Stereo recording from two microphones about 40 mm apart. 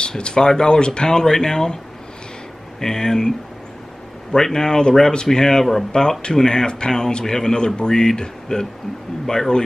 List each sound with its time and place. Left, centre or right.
0.2 s speech: centre
2.8 s speech: centre
5.9 s speech: left